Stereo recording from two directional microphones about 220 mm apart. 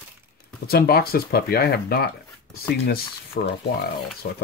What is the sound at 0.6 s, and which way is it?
Speech, 45° left (ahead or behind).